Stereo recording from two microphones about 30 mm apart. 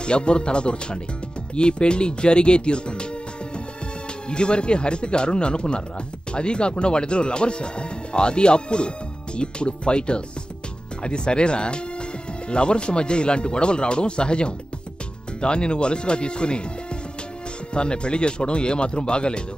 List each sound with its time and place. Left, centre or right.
0.0 s speech: left
4.3 s speech: left
17.7 s speech: left